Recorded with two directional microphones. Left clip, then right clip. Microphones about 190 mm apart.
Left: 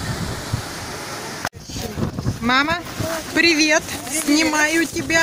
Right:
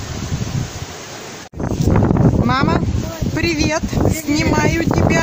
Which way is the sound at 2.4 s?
5° right (ahead or behind).